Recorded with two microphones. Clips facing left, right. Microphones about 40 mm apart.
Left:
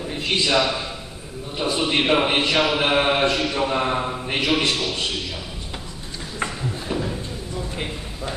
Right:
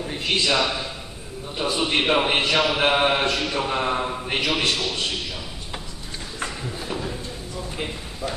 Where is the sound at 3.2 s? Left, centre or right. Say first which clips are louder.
Left 3 dB; centre.